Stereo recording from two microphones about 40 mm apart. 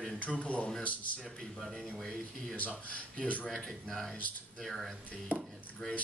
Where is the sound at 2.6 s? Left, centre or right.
Left.